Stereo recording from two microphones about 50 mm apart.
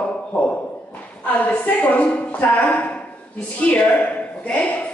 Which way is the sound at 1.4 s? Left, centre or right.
Left.